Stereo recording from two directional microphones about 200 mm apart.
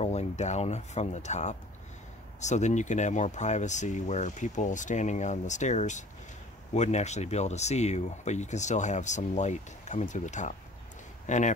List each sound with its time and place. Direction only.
0.0 s speech: 35° left (ahead or behind)